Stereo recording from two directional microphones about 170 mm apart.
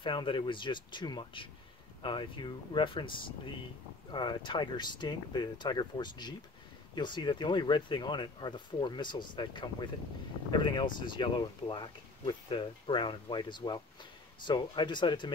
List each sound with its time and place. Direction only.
0.0 s speech: 30° left (ahead or behind)